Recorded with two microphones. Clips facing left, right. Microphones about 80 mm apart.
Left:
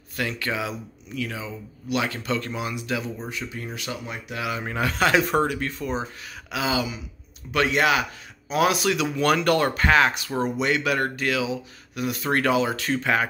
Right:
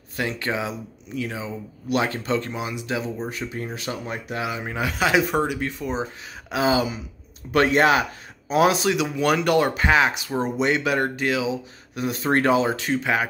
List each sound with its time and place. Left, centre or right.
0.1 s speech: right
3.3 s speech: right
4.5 s speech: centre
6.5 s speech: right
12.8 s speech: centre